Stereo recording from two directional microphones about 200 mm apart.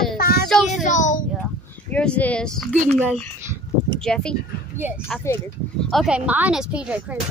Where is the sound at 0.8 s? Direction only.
40° left (ahead or behind).